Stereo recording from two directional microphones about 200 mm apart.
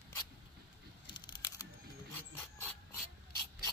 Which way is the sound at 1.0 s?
20° left (ahead or behind).